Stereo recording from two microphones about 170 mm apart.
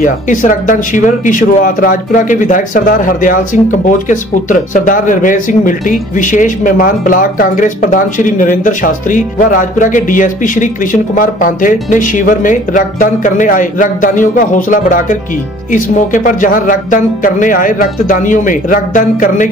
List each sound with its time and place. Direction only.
0.0 s speech: 50° left (ahead or behind)